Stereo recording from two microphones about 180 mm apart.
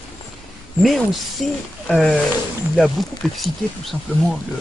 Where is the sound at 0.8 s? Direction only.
Centre (ahead or behind).